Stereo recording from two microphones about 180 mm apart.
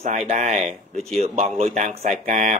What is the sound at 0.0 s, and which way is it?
Speech, 40° right (ahead or behind).